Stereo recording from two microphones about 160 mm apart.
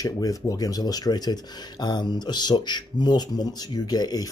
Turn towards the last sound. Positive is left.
turn(degrees=25)  # may be behind; listen again after turning